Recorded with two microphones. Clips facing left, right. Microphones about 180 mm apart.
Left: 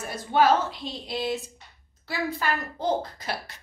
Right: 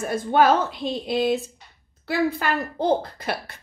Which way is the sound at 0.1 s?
50° right (ahead or behind).